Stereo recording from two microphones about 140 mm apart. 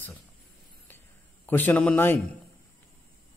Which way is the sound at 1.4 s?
10° left (ahead or behind).